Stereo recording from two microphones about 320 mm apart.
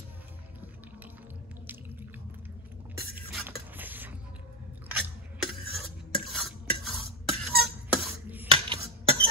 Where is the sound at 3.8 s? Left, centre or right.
Centre.